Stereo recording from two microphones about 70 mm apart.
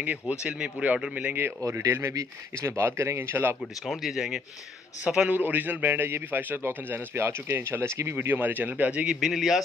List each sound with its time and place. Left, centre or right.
0.0 s a man's voice: right
1.6 s speech: right
3.8 s a man's voice: centre
5.3 s a man's voice: right
9.0 s a man's voice: centre